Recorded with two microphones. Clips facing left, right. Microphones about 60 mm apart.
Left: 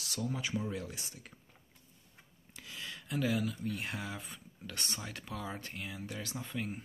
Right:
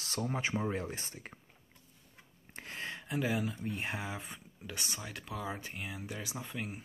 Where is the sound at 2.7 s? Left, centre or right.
Right.